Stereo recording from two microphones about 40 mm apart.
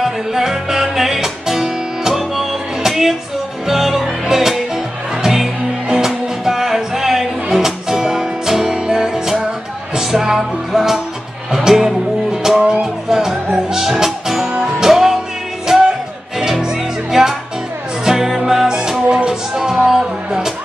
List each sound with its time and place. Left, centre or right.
0.0 s music: centre
18.7 s music: right